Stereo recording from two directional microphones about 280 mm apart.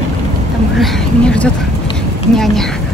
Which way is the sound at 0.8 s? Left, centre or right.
Centre.